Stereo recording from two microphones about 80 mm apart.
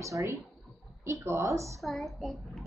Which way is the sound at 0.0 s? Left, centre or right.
Right.